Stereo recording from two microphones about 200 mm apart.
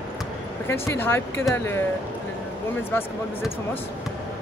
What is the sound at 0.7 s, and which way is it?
Speech, 10° left (ahead or behind).